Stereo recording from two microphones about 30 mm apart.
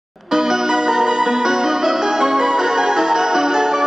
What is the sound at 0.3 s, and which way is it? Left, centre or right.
Music, centre.